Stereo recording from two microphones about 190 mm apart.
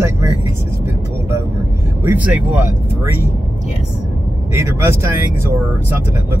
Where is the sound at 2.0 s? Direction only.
10° right (ahead or behind).